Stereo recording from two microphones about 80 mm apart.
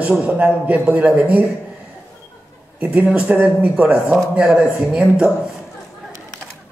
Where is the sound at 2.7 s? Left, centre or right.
Centre.